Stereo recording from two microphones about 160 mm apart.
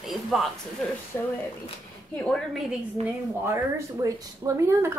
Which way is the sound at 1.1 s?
15° left (ahead or behind).